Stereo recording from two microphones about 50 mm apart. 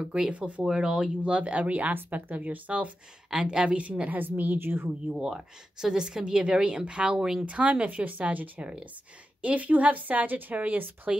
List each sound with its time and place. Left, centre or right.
0.0 s speech: centre
3.3 s speech: centre
4.2 s speech: right
5.2 s a woman's voice: centre; by 11.1 s right